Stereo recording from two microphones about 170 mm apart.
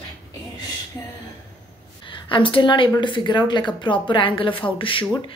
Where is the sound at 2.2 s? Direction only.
30° left (ahead or behind).